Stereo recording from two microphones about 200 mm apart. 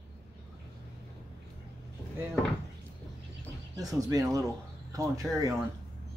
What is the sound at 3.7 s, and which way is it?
Speech, 15° right (ahead or behind).